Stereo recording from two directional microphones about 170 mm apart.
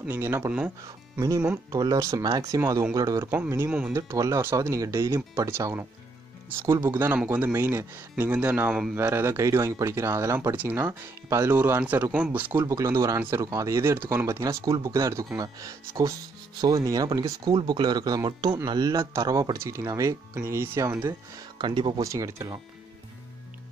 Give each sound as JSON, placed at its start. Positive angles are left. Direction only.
{"t": 0.0, "sound": "speech", "side_deg": -15}
{"t": 21.1, "sound": "speech", "side_deg": -25}